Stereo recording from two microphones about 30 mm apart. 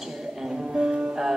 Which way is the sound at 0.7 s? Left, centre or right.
Right.